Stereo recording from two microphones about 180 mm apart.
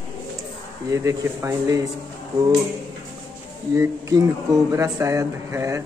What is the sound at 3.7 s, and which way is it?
Speech, 15° right (ahead or behind).